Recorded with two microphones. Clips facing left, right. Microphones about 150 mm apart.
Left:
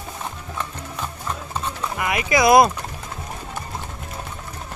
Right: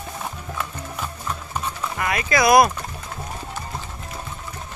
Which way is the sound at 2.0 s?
20° left (ahead or behind).